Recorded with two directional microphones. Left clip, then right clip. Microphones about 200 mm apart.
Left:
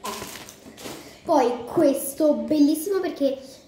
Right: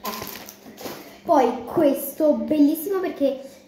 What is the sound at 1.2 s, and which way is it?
A woman's voice, 5° left (ahead or behind).